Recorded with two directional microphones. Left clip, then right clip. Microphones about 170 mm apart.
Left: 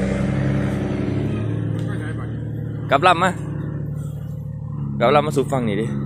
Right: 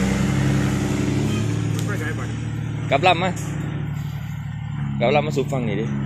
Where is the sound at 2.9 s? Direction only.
20° left (ahead or behind).